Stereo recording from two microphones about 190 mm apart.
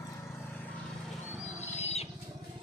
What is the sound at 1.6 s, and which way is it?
Owl, 35° left (ahead or behind).